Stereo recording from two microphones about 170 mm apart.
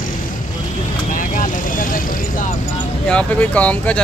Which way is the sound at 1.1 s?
50° left (ahead or behind).